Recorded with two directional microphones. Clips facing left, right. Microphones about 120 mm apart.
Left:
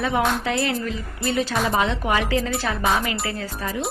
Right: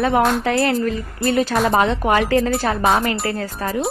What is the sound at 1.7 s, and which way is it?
A woman's voice, 50° right (ahead or behind).